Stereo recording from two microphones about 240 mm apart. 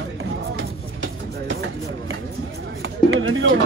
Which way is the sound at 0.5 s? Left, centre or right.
Right.